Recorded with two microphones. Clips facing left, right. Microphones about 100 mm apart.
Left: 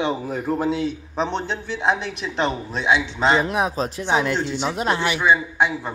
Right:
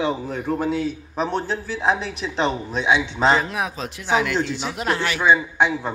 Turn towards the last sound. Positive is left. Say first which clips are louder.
# right 1 dB
turn(degrees=0)  # may be behind; listen again after turning